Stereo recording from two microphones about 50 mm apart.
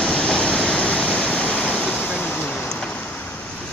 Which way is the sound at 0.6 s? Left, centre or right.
Centre.